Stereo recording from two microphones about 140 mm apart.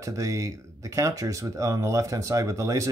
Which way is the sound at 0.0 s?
25° right (ahead or behind).